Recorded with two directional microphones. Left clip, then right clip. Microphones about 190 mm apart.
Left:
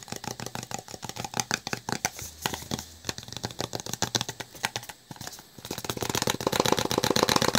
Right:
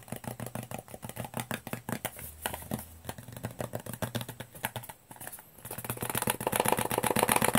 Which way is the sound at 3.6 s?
30° left (ahead or behind).